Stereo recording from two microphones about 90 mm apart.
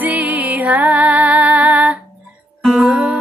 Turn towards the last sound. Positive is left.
turn(degrees=-5)  # may be behind; listen again after turning